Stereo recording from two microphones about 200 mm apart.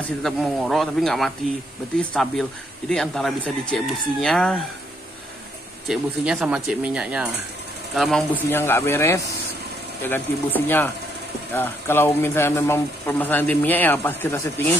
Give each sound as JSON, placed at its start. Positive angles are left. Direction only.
{"t": 0.2, "sound": "speech", "side_deg": 0}
{"t": 5.9, "sound": "speech", "side_deg": 0}